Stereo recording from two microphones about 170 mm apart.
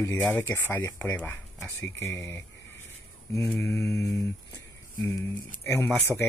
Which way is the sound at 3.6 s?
15° left (ahead or behind).